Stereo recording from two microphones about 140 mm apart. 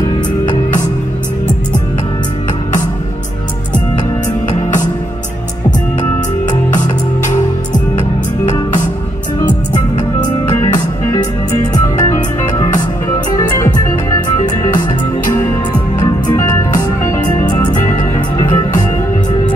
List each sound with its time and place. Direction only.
10.6 s music: 25° left (ahead or behind)
16.0 s music: 25° left (ahead or behind)